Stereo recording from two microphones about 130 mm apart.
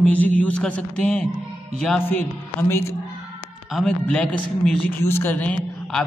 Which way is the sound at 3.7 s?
5° left (ahead or behind).